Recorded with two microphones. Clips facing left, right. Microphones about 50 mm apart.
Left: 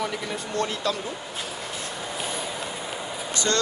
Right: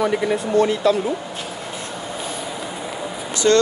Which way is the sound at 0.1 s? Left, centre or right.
Right.